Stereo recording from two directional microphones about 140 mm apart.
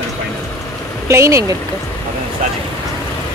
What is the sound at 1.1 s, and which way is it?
Speech, 20° right (ahead or behind).